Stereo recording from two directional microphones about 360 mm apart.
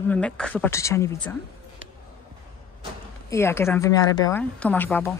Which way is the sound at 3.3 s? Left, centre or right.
Centre.